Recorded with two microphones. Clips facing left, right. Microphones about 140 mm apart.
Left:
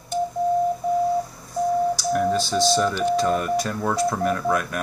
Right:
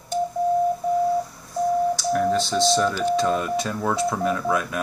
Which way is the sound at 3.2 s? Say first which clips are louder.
Left 1 dB; 5° left (ahead or behind).